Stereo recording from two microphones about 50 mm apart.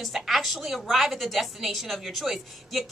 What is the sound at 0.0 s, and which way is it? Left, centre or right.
A woman's voice, centre.